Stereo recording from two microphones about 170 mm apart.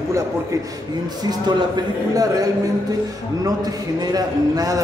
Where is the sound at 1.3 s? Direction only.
25° right (ahead or behind).